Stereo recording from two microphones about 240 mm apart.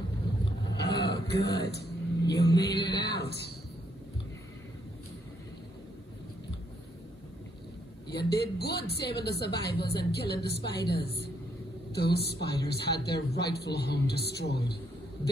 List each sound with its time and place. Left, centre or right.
0.7 s throat clearing: left
3.0 s speech: left
8.1 s speech: left